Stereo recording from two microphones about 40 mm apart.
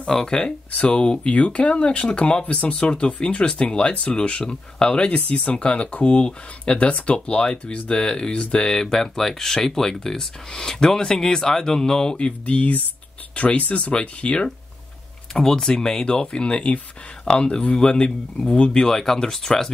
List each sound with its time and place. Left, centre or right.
0.0 s speech: centre
0.7 s speech: left
13.9 s speech: left
15.3 s speech: centre